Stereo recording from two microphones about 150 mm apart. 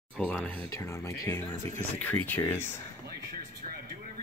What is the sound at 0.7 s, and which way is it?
Speech, 20° left (ahead or behind).